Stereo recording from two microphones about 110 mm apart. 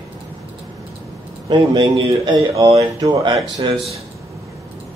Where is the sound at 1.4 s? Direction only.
45° right (ahead or behind).